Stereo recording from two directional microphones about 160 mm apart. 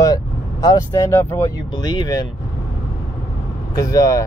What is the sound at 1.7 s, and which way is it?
Speech, 25° left (ahead or behind).